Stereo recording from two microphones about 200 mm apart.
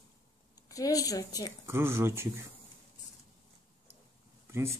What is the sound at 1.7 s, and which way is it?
Speech, 10° right (ahead or behind).